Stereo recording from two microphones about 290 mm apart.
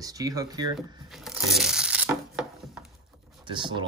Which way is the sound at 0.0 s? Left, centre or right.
Centre.